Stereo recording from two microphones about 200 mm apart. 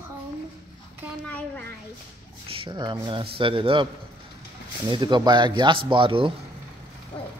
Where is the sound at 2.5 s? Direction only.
25° right (ahead or behind).